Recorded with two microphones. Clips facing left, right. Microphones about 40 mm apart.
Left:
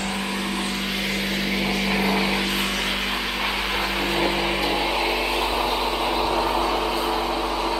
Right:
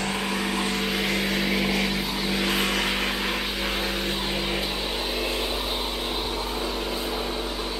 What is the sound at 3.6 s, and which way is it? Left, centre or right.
Vehicle, left.